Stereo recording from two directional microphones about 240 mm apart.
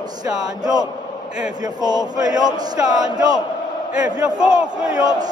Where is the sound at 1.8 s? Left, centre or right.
Centre.